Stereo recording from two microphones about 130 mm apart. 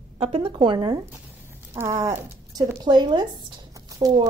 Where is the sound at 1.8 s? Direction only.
20° right (ahead or behind).